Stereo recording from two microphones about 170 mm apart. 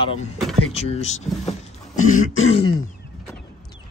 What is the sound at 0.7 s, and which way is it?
Speech, 40° left (ahead or behind).